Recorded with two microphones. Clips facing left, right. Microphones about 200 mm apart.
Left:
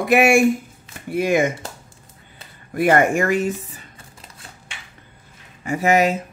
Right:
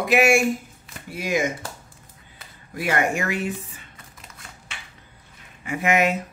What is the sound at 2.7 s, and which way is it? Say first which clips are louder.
Speech: left 7 dB; 50° left (ahead or behind).